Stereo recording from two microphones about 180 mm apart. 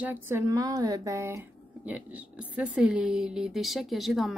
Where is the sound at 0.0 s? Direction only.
10° right (ahead or behind).